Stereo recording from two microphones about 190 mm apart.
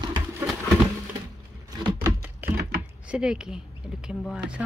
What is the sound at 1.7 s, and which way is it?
Typewriter, 15° right (ahead or behind).